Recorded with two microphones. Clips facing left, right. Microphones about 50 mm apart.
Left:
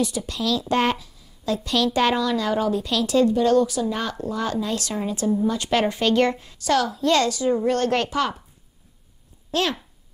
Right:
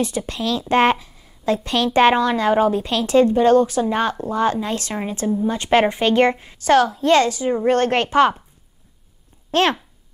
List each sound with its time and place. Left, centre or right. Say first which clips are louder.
0.0 s a woman's voice: right 2 dB; right
9.5 s speech: right 6 dB; right